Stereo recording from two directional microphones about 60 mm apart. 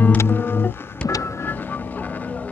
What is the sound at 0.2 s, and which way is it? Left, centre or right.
Music, left.